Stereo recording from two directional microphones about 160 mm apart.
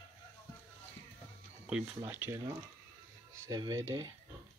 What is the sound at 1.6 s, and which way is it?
Speech, 10° right (ahead or behind).